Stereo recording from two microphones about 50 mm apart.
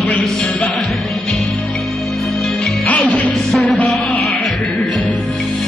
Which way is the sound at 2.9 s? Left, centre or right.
Left.